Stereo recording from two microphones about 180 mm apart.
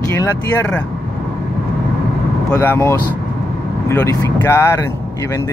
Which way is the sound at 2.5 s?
10° left (ahead or behind).